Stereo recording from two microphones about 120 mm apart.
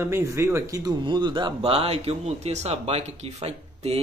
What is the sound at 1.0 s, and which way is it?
Speech, 40° right (ahead or behind).